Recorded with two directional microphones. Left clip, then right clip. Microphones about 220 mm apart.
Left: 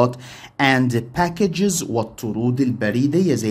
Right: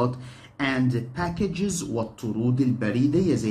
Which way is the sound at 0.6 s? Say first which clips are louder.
Left 8 dB; 50° left (ahead or behind).